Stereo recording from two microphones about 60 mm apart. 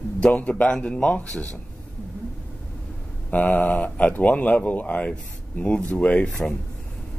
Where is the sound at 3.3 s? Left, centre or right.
Left; by 6.5 s centre.